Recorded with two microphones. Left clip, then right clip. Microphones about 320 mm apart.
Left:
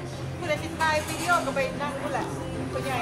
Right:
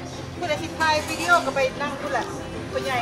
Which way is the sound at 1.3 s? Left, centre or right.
Right.